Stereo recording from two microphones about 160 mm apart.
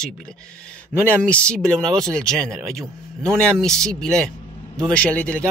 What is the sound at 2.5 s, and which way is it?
Speech, 20° right (ahead or behind).